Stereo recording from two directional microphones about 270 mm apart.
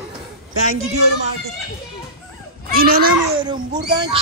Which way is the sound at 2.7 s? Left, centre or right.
Right.